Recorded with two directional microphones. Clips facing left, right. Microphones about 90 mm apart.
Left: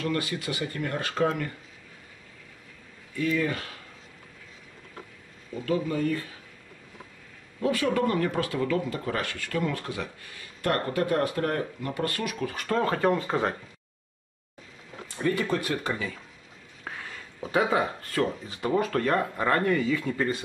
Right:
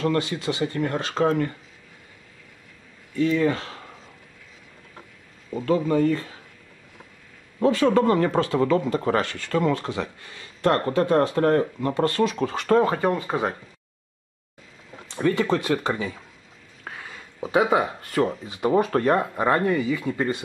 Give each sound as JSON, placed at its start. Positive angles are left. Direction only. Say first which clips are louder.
{"t": 0.0, "sound": "speech", "louder": "right 6 dB", "side_deg": -25}
{"t": 3.2, "sound": "speech", "louder": "right 6 dB", "side_deg": -25}
{"t": 5.5, "sound": "speech", "louder": "right 6 dB", "side_deg": -35}
{"t": 7.6, "sound": "speech", "louder": "right 6 dB", "side_deg": -30}
{"t": 15.3, "sound": "speech", "louder": "right 5 dB", "side_deg": -25}
{"t": 16.8, "sound": "a sound", "louder": "right 1 dB", "side_deg": -5}
{"t": 17.4, "sound": "speech", "louder": "right 4 dB", "side_deg": -20}